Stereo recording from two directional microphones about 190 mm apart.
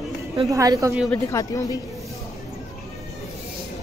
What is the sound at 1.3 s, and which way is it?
Speech, 15° left (ahead or behind).